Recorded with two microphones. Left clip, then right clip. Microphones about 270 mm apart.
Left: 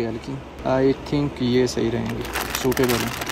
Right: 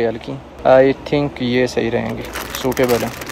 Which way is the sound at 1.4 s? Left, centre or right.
Centre.